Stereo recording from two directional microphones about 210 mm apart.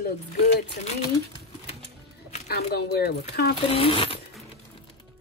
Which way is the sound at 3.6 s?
25° left (ahead or behind).